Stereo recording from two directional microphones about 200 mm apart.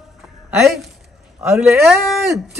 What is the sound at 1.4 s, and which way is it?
Speech, 10° right (ahead or behind).